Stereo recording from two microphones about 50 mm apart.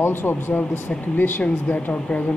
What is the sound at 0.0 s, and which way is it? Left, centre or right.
Speech, left.